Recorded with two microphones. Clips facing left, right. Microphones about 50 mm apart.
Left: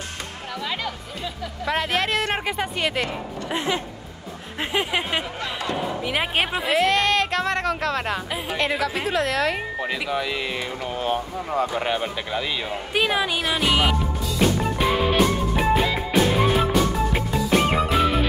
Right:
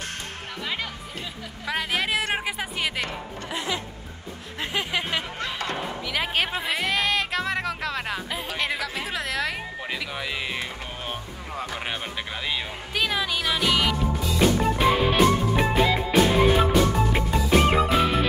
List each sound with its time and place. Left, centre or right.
1.7 s speech: centre
3.5 s speech: left
4.6 s speech: left
6.6 s speech: centre
12.9 s speech: centre
13.4 s music: centre
14.6 s music: centre